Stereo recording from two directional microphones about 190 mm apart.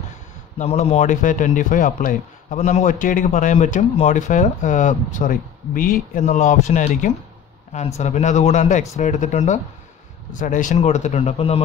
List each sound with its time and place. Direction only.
0.6 s a man's voice: 35° left (ahead or behind)